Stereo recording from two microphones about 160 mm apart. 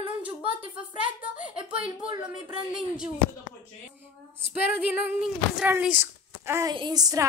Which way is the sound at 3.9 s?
15° right (ahead or behind).